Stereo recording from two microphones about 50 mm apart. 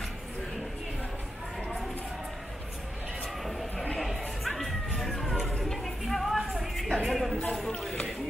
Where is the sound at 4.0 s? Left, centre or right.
Centre.